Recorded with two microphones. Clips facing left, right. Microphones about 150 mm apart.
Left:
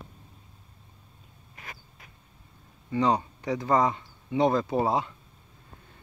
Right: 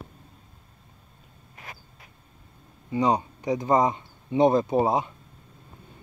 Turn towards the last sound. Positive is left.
turn(degrees=-20)  # may be behind; listen again after turning